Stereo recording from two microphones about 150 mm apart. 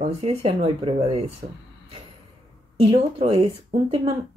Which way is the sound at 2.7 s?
40° right (ahead or behind).